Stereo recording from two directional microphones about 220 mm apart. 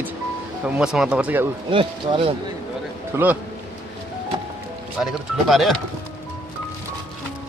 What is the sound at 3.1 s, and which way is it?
Speech, 5° right (ahead or behind).